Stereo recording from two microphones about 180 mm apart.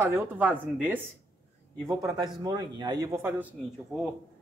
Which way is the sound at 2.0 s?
20° right (ahead or behind).